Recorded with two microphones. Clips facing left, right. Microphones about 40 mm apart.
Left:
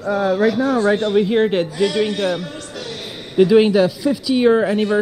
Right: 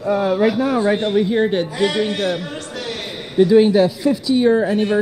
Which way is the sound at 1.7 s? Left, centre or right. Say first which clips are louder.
Even; right.